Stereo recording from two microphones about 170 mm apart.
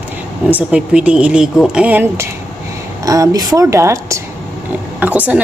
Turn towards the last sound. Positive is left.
turn(degrees=-10)  # may be behind; listen again after turning